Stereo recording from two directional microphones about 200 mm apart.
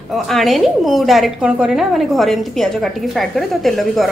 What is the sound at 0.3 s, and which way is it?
A woman's voice, centre (ahead or behind).